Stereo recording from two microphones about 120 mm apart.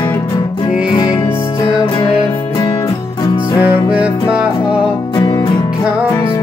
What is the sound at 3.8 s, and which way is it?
Music, 10° right (ahead or behind).